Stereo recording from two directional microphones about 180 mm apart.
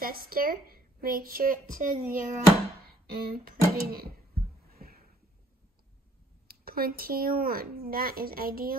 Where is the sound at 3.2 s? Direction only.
55° right (ahead or behind).